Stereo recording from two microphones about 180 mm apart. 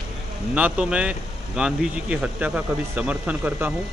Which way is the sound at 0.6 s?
5° right (ahead or behind).